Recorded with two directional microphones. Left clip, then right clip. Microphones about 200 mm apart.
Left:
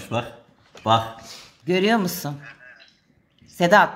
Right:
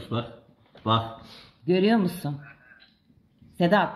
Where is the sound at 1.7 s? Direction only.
Centre (ahead or behind).